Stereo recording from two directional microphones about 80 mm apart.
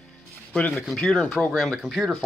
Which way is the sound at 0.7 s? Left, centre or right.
Centre.